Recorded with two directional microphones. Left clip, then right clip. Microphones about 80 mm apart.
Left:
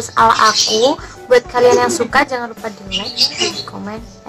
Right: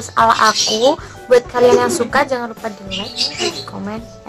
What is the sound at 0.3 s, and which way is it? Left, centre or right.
Speech, left.